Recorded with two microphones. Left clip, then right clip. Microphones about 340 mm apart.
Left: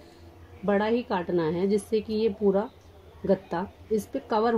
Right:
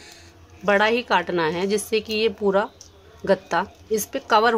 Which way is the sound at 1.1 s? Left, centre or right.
Right.